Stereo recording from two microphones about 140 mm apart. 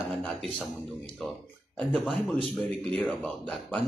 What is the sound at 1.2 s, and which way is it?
Speech, centre (ahead or behind).